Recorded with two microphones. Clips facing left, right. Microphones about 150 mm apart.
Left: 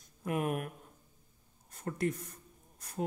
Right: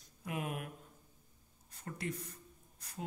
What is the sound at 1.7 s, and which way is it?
Speech, 50° left (ahead or behind).